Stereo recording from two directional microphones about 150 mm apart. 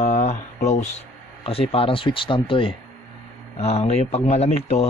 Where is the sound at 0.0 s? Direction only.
50° left (ahead or behind).